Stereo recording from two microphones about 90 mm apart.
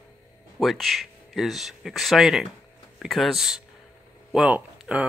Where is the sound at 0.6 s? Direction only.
Centre (ahead or behind).